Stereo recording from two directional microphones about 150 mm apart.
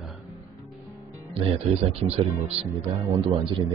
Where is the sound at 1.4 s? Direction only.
45° right (ahead or behind).